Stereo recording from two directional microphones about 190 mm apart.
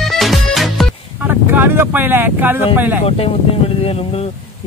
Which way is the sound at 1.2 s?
10° right (ahead or behind).